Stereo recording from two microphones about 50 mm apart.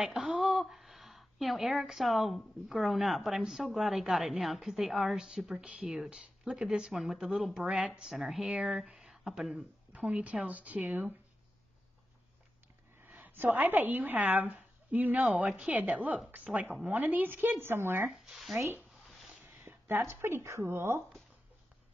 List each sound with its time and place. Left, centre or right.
0.0 s a woman's voice: centre
5.5 s speech: centre
6.9 s a woman's voice: centre
8.1 s a woman's voice: centre
8.9 s a sound: centre
9.6 s a woman's voice: right
13.0 s a woman's voice: right
19.4 s a sound: right
20.1 s speech: right